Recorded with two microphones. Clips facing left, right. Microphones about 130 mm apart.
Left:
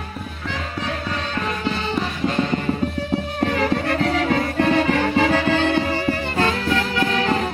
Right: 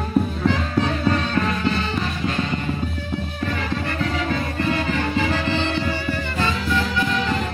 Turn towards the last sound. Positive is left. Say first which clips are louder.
# left 1 dB
turn(degrees=85)